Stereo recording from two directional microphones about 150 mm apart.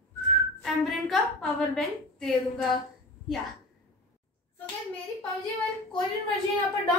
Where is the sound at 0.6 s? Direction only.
Centre (ahead or behind).